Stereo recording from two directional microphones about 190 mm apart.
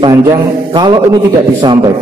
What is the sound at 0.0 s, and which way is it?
A man's voice, 20° right (ahead or behind).